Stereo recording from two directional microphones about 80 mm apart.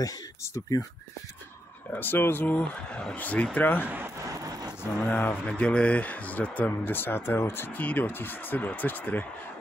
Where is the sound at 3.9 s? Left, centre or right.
Right.